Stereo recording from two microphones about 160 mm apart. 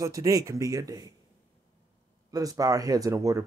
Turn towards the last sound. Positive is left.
turn(degrees=-20)  # may be behind; listen again after turning